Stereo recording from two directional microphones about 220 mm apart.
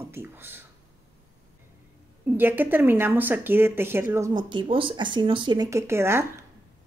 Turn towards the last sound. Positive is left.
turn(degrees=-10)  # may be behind; listen again after turning